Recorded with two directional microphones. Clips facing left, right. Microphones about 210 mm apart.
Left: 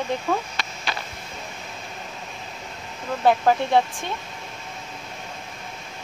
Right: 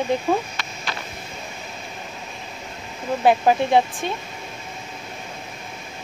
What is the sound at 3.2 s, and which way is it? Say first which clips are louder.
Speech: right 2 dB; 15° right (ahead or behind).